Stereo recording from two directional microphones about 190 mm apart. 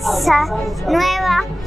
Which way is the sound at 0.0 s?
Centre (ahead or behind).